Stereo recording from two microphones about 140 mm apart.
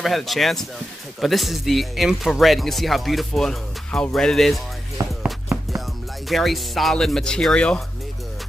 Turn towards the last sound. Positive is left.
turn(degrees=5)  # may be behind; listen again after turning